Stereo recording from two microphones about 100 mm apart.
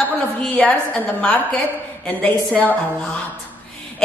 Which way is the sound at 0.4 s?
15° left (ahead or behind).